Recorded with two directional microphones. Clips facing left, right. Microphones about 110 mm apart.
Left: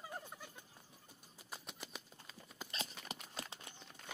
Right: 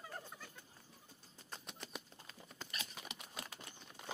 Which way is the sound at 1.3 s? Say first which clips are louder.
Left 1 dB; 5° left (ahead or behind).